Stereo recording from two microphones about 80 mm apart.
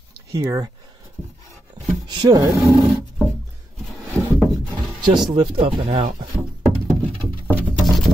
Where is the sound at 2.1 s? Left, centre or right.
Right.